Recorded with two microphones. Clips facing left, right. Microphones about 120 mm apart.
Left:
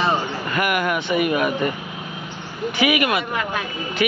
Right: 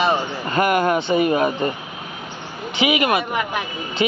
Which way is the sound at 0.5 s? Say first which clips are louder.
Right 5 dB; 30° right (ahead or behind).